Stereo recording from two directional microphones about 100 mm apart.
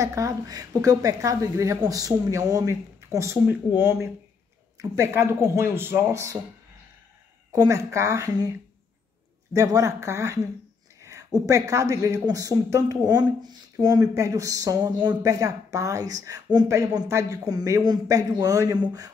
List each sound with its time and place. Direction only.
0.0 s a woman's voice: 35° right (ahead or behind)
7.5 s speech: 35° right (ahead or behind)
9.5 s a woman's voice: 35° right (ahead or behind)